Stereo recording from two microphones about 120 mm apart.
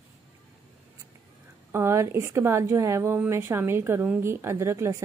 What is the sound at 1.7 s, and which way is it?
Speech, 20° right (ahead or behind).